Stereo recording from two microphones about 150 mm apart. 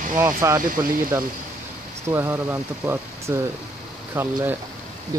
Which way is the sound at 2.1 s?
15° right (ahead or behind).